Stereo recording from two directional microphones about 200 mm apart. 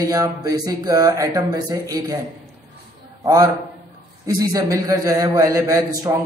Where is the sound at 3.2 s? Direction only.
15° right (ahead or behind).